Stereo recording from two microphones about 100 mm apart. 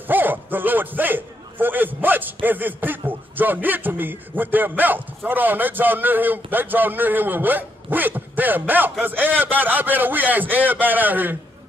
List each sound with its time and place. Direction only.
0.0 s a man's voice: 20° right (ahead or behind)